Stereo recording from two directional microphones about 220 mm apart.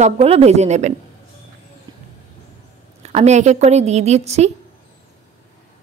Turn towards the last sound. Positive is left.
turn(degrees=-30)  # may be behind; listen again after turning